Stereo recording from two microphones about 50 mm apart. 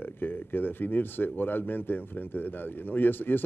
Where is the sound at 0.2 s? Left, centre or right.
Left.